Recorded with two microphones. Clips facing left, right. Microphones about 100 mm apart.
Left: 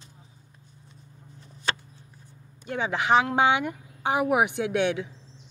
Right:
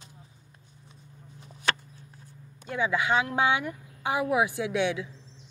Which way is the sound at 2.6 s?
60° left (ahead or behind).